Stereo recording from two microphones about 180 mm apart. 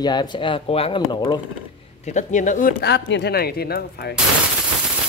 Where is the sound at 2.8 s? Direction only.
70° left (ahead or behind).